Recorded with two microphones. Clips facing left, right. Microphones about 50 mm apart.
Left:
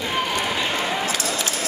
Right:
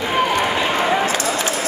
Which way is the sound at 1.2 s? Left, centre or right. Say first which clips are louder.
Right 5 dB; centre.